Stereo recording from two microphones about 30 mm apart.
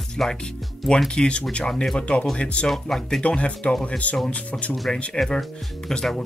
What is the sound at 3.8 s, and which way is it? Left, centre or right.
Speech, left.